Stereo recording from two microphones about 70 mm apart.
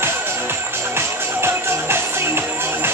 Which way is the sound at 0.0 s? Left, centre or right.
Right.